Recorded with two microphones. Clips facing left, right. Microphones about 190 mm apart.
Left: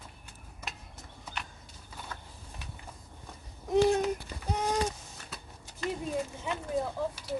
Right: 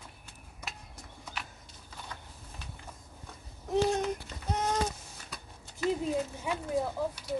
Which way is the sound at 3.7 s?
10° left (ahead or behind).